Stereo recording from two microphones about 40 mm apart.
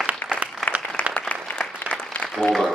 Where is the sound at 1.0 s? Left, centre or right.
Left.